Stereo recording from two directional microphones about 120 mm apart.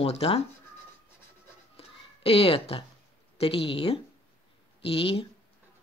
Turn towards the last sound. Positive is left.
turn(degrees=55)  # may be behind; listen again after turning